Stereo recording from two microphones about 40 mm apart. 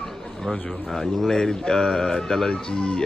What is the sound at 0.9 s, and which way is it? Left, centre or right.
Speech, centre.